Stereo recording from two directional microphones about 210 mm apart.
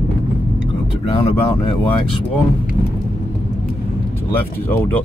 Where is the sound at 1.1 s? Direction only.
30° left (ahead or behind).